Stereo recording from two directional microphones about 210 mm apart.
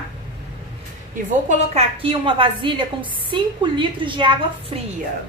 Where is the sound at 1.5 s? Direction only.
25° right (ahead or behind).